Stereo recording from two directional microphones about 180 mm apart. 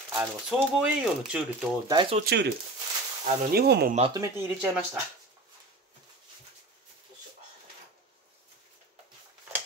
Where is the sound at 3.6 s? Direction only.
60° right (ahead or behind).